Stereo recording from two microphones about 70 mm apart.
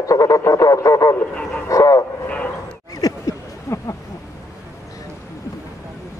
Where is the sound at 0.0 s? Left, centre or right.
Left.